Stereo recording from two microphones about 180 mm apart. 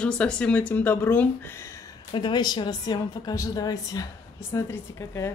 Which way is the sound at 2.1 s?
25° left (ahead or behind).